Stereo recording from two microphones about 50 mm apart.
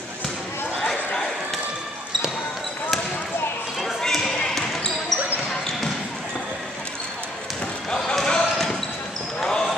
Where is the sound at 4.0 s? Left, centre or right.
Centre.